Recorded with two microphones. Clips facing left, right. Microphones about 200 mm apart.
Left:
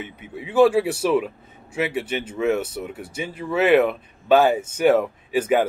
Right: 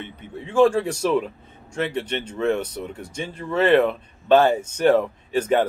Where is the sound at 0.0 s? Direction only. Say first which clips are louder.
Left 1 dB; 10° left (ahead or behind).